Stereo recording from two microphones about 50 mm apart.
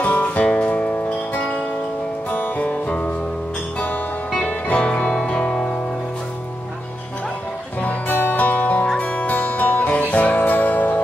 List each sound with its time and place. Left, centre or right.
0.0 s music: left
4.5 s music: left
7.8 s music: left